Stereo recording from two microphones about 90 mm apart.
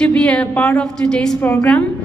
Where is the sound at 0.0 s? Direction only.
10° left (ahead or behind).